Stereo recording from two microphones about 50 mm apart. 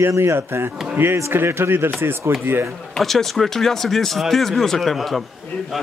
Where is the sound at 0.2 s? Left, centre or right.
Right.